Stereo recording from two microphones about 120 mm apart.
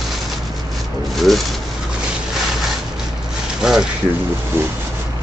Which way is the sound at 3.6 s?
5° right (ahead or behind).